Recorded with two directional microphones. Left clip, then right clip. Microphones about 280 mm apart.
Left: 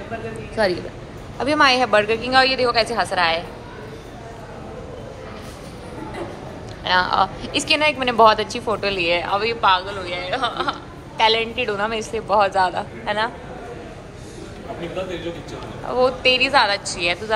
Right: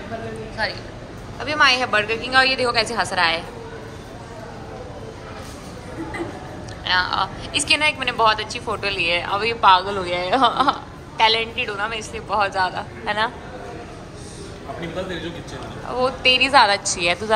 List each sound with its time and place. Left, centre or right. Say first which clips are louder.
1.4 s a woman's voice: left 1 dB; centre
6.8 s a woman's voice: left 2 dB; centre
15.9 s a woman's voice: left 1 dB; centre